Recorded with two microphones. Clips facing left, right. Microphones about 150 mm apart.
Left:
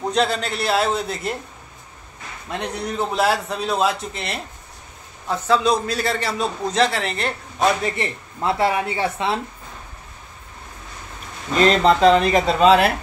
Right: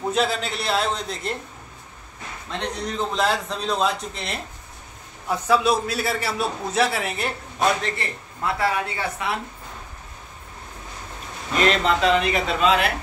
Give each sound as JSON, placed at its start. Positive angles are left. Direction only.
{"t": 0.1, "sound": "a man's voice", "side_deg": 0}
{"t": 2.6, "sound": "a man's voice", "side_deg": 10}
{"t": 7.8, "sound": "speech", "side_deg": 20}
{"t": 11.6, "sound": "speech", "side_deg": 35}